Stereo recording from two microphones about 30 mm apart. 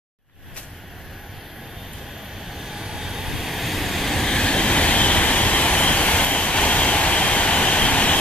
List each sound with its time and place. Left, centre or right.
2.4 s vehicle: centre
4.3 s vehicle: left